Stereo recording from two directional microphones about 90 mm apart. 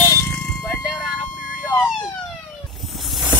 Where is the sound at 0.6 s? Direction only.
10° right (ahead or behind).